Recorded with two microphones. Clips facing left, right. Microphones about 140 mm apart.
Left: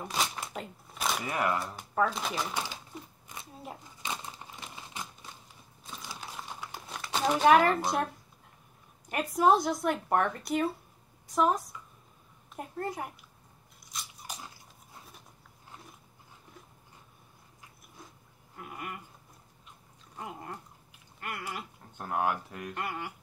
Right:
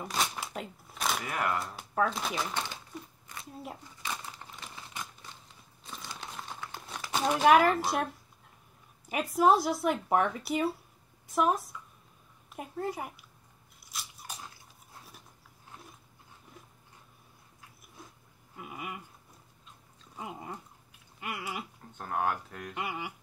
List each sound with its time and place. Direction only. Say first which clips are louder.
0.0 s shuffling cards: even; centre (ahead or behind)
1.2 s speech: left 4 dB; 15° left (ahead or behind)
1.6 s speech: left 1 dB; centre (ahead or behind)
2.9 s a sound: right 1 dB; 20° left (ahead or behind)
4.0 s crumpling: left 1 dB; 20° left (ahead or behind)
5.9 s crumpling: even; centre (ahead or behind)
7.0 s speech: left 1 dB; 5° right (ahead or behind)
9.1 s speech: even; centre (ahead or behind)
18.6 s a sound: even; 5° right (ahead or behind)
20.2 s a sound: even; 5° right (ahead or behind)
21.2 s speech: right 1 dB; 5° right (ahead or behind)
21.9 s speech: left 1 dB; 10° left (ahead or behind)
22.8 s speech: right 1 dB; 5° right (ahead or behind)